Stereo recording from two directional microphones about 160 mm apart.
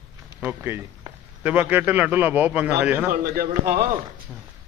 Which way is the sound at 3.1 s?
65° right (ahead or behind).